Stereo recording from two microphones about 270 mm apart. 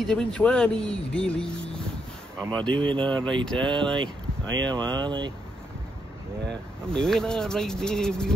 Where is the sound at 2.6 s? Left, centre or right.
Centre.